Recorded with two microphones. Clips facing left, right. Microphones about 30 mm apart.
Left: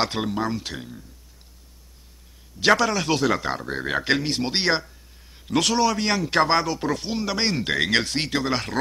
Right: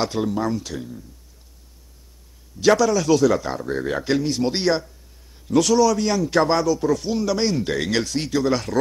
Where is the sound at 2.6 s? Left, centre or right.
Left.